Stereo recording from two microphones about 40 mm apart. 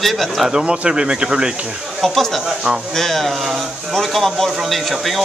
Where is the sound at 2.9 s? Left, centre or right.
Centre.